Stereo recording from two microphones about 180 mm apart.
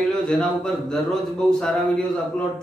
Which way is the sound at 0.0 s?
5° left (ahead or behind).